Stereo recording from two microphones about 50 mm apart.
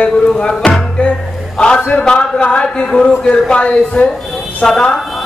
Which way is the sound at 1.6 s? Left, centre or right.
Left.